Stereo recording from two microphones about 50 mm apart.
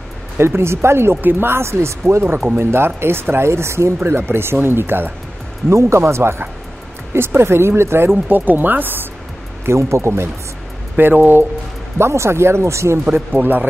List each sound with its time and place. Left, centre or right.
0.4 s speech: right
1.1 s speech: right
1.5 s speech: right
2.2 s speech: right
5.7 s speech: right
8.3 s speech: right
9.7 s speech: right
11.0 s speech: right
12.0 s speech: right
13.1 s speech: right